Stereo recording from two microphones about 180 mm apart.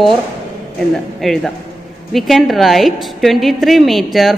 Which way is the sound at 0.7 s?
Centre (ahead or behind).